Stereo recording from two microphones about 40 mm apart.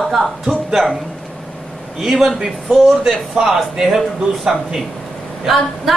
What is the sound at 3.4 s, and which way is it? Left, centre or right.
Speech, centre.